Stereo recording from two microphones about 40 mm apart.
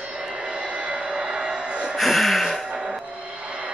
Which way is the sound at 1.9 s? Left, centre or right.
Centre.